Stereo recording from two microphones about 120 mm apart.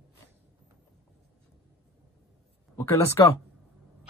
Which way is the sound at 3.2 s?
30° left (ahead or behind).